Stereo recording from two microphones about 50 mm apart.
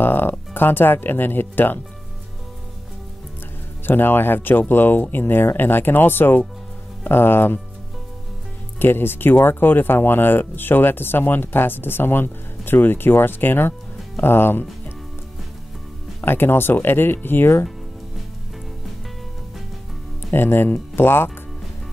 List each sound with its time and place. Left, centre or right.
0.0 s speech: left
3.8 s speech: left
8.7 s speech: left
16.2 s speech: left
20.3 s speech: left